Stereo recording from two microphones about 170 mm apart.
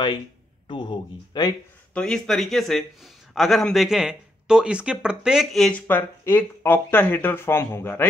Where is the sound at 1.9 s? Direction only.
5° left (ahead or behind).